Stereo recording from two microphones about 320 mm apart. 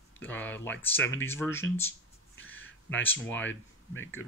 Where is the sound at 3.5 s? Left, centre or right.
Left.